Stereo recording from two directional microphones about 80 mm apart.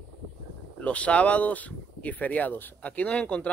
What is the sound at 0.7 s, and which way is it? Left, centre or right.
Speech, centre.